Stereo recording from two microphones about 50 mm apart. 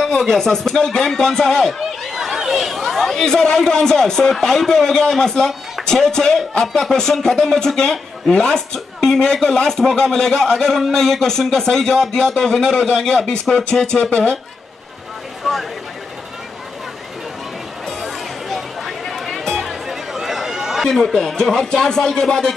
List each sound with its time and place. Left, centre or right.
0.2 s speech: centre
1.8 s speech: centre
15.5 s a sound: centre
17.8 s music: centre
19.9 s a man's voice: centre